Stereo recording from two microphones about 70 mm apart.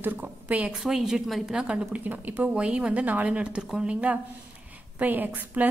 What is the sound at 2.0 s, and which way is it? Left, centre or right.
A woman's voice, right.